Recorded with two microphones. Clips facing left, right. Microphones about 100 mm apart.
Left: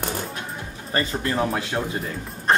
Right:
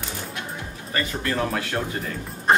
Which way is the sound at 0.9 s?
25° left (ahead or behind).